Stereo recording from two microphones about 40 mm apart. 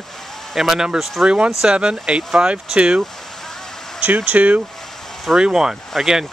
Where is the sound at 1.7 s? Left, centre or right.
Right.